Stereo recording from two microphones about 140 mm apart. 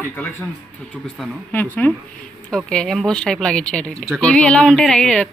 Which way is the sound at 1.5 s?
15° left (ahead or behind).